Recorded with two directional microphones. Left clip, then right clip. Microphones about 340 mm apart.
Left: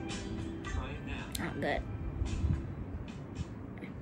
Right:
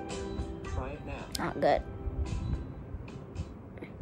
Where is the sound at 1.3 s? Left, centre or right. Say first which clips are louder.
Right 8 dB; centre.